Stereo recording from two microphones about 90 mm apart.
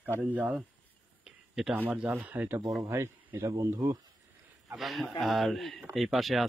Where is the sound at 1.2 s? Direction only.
5° right (ahead or behind).